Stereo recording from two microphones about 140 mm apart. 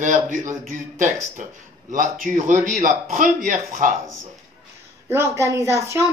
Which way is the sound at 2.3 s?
70° right (ahead or behind).